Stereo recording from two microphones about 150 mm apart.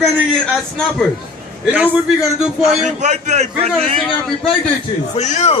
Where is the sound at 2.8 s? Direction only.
50° right (ahead or behind).